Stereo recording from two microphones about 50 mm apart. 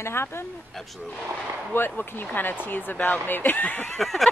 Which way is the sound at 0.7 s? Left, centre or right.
Centre.